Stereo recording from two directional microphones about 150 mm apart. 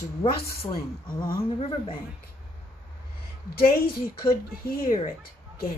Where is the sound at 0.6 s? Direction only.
40° left (ahead or behind).